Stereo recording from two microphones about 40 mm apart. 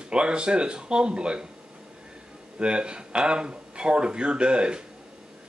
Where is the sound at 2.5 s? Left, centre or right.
Right.